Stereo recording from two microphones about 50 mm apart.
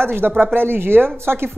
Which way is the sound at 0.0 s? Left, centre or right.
Right.